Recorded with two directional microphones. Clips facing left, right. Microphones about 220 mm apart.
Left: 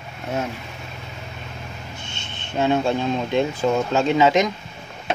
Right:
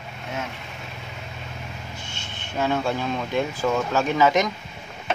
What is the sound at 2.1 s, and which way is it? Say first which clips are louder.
Speech: left 4 dB; 20° left (ahead or behind).